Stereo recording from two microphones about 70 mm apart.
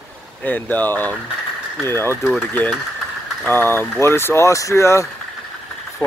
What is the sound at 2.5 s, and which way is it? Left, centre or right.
Speech, left.